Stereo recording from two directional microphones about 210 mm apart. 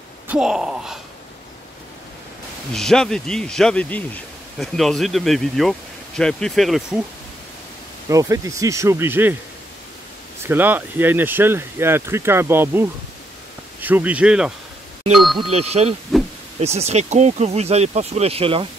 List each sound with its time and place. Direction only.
0.3 s speech: 5° right (ahead or behind)
2.7 s speech: 5° left (ahead or behind)
8.1 s speech: 15° right (ahead or behind)
10.4 s speech: 10° right (ahead or behind)
15.5 s speech: 30° right (ahead or behind)
16.1 s a sound: centre (ahead or behind)
16.5 s speech: 30° right (ahead or behind)